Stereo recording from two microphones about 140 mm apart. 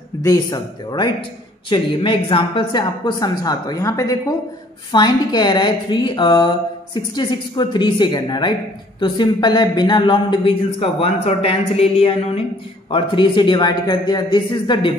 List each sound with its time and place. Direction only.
0.2 s a woman's voice: 25° left (ahead or behind)